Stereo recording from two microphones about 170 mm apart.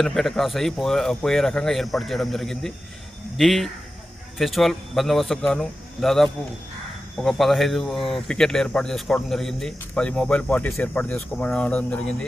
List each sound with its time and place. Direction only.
0.0 s speech: centre (ahead or behind)